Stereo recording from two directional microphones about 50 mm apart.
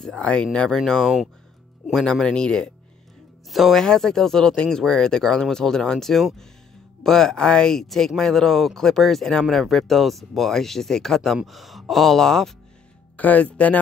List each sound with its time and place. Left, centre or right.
0.0 s speech: centre
3.4 s speech: centre
3.8 s speech: centre
13.1 s speech: left